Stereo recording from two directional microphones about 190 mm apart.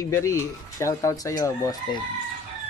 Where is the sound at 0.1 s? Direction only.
15° left (ahead or behind).